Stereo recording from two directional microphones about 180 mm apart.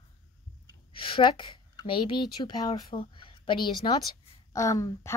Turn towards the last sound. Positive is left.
turn(degrees=20)  # may be behind; listen again after turning